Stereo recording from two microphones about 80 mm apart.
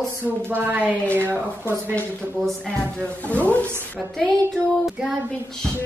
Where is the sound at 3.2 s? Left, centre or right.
Centre.